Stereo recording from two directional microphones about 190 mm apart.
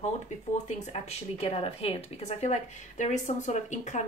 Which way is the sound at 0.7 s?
35° left (ahead or behind).